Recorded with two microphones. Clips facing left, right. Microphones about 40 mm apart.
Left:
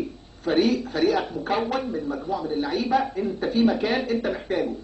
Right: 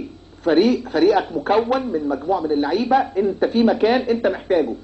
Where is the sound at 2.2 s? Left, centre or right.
Right.